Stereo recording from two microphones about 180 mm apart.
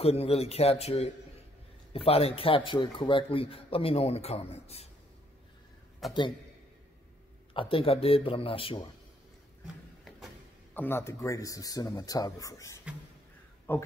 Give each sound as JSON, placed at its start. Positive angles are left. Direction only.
{"t": 0.0, "sound": "a man's voice", "side_deg": 35}
{"t": 6.0, "sound": "a man's voice", "side_deg": 0}
{"t": 7.5, "sound": "a man's voice", "side_deg": 30}
{"t": 10.7, "sound": "speech", "side_deg": 10}